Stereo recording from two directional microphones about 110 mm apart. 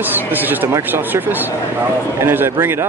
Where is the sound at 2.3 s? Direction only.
20° right (ahead or behind).